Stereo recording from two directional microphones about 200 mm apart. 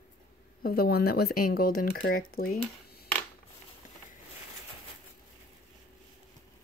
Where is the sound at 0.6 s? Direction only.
50° left (ahead or behind).